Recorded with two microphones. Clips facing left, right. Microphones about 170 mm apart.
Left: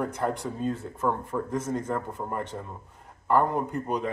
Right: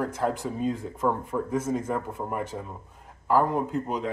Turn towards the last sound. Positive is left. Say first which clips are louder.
# right 1 dB
turn(degrees=-5)  # may be behind; listen again after turning